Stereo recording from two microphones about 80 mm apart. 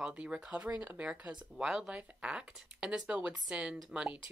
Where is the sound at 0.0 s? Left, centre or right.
Centre.